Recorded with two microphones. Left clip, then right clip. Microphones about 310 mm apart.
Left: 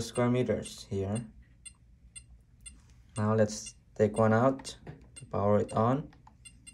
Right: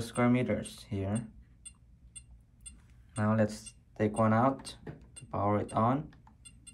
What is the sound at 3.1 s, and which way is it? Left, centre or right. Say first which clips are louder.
Speech: left 2 dB; centre.